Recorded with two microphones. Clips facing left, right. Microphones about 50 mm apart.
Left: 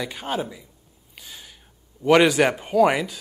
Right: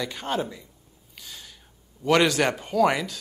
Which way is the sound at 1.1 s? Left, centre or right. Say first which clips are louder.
Left 1 dB; centre.